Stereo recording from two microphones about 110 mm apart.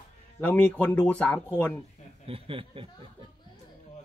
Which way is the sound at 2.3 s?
55° right (ahead or behind).